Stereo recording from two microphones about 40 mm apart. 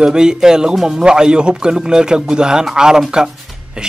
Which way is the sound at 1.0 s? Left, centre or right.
Right.